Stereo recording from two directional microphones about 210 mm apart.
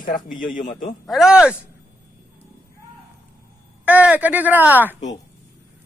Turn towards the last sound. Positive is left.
turn(degrees=-10)  # may be behind; listen again after turning